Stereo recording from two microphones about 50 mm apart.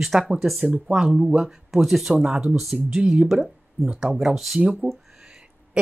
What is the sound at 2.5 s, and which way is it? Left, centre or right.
Speech, centre.